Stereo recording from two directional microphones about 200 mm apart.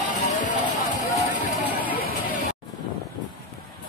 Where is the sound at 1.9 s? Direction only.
45° left (ahead or behind).